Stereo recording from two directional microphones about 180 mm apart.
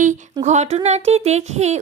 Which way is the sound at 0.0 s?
40° right (ahead or behind).